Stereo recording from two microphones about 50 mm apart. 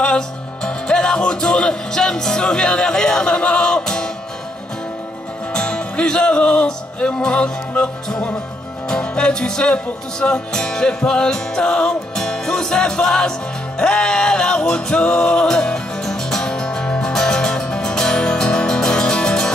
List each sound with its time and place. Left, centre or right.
0.7 s music: centre
5.5 s music: left
8.8 s music: centre